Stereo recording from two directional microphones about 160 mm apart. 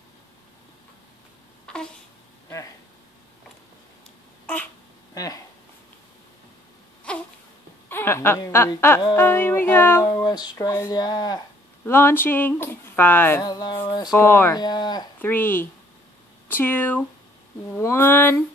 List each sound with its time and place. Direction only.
1.7 s a sound: 5° left (ahead or behind)
5.1 s speech: 20° left (ahead or behind)
7.1 s insect: 5° left (ahead or behind)
7.9 s a sound: 15° left (ahead or behind)
9.1 s speech: 15° left (ahead or behind)
10.0 s music: 25° left (ahead or behind)
11.8 s speech: 15° left (ahead or behind)
13.4 s music: 25° left (ahead or behind)
14.1 s speech: 15° left (ahead or behind)
14.6 s music: 25° left (ahead or behind)
15.1 s speech: 10° left (ahead or behind)